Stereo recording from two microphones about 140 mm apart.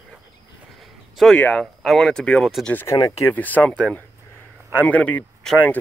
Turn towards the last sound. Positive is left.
turn(degrees=10)  # may be behind; listen again after turning